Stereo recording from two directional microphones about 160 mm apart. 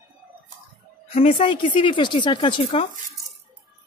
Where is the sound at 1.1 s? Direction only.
40° left (ahead or behind).